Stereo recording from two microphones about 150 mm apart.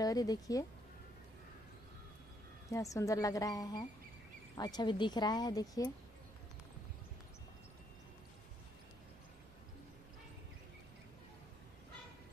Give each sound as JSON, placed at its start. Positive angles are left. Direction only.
{"t": 0.0, "sound": "speech", "side_deg": 25}
{"t": 2.7, "sound": "speech", "side_deg": 20}